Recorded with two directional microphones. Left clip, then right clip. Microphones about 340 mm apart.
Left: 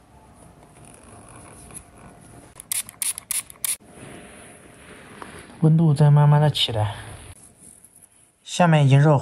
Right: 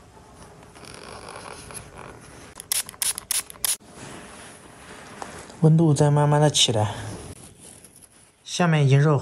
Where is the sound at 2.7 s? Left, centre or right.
Centre.